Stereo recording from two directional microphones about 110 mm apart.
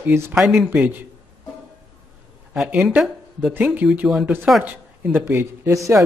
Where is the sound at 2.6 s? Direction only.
10° right (ahead or behind).